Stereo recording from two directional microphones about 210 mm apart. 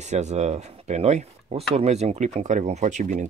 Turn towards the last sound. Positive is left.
turn(degrees=-35)  # may be behind; listen again after turning